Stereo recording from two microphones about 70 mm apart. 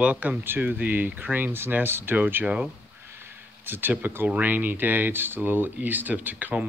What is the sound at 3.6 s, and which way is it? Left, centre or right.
Speech, right.